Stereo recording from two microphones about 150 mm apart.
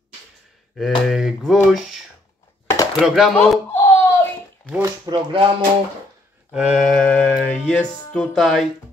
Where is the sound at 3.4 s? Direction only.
15° left (ahead or behind).